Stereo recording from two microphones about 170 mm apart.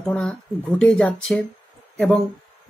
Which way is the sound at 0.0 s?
5° left (ahead or behind).